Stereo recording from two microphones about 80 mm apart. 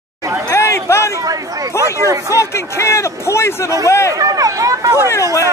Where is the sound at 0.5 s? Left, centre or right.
Left.